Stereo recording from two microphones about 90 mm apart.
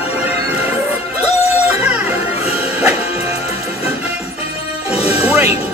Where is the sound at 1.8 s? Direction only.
15° right (ahead or behind).